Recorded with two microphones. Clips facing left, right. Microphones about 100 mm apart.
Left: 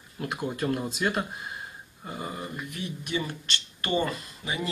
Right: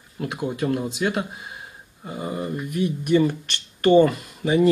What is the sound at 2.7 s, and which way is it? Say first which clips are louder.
Speech: right 14 dB; 55° right (ahead or behind).